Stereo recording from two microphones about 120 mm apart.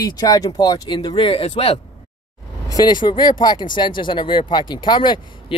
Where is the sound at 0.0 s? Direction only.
35° left (ahead or behind); by 1.8 s 50° left (ahead or behind).